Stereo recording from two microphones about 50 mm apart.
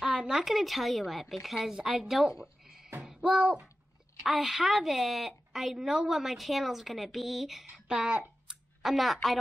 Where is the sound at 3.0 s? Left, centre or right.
Centre.